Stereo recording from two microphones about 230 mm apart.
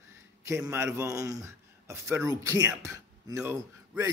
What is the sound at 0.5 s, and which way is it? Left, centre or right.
A man's voice, centre.